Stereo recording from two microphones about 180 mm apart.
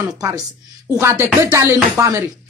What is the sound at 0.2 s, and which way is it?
A woman's voice, 20° right (ahead or behind).